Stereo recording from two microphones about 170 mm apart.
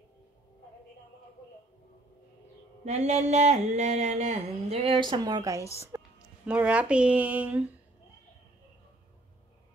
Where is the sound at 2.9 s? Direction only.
40° right (ahead or behind); by 5.7 s 20° right (ahead or behind).